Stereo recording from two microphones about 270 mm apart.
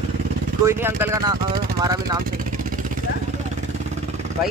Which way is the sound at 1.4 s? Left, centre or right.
Right.